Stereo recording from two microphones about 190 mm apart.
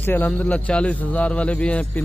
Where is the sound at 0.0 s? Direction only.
10° left (ahead or behind).